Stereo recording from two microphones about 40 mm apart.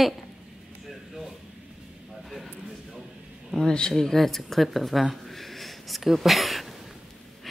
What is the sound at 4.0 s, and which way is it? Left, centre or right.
Speech, centre.